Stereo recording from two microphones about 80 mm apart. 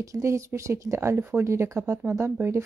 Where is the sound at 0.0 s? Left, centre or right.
Right.